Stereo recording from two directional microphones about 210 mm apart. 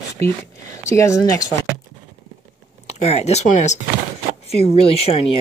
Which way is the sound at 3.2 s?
30° left (ahead or behind).